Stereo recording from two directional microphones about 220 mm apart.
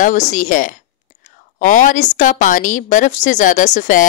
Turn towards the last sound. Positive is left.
turn(degrees=35)  # may be behind; listen again after turning